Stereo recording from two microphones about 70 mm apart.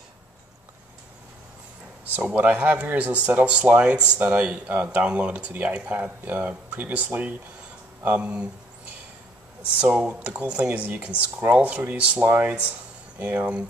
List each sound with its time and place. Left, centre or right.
2.1 s speech: right
9.8 s speech: right